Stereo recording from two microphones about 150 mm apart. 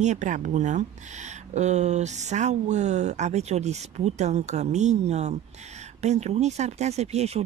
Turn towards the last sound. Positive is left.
turn(degrees=-45)  # may be behind; listen again after turning